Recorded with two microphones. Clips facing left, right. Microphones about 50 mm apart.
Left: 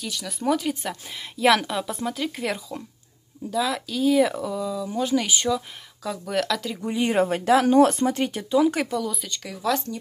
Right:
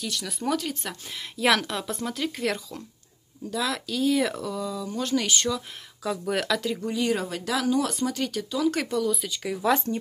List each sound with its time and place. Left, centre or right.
0.0 s speech: centre
6.0 s speech: centre
6.8 s speech: left
8.7 s speech: centre
9.7 s speech: right